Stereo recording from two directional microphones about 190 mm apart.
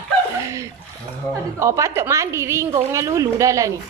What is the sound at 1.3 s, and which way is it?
A woman's voice, 15° right (ahead or behind).